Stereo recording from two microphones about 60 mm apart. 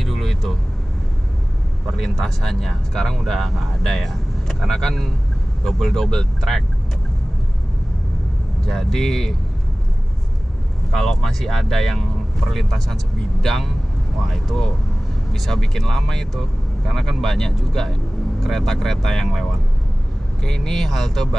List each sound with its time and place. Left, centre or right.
0.0 s vehicle: centre
1.9 s speech: centre
8.6 s speech: centre
10.9 s speech: centre
20.4 s speech: centre